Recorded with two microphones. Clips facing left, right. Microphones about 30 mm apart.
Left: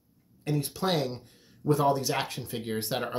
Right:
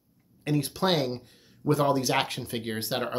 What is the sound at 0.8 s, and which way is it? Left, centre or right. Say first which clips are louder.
Speech: right 2 dB; right.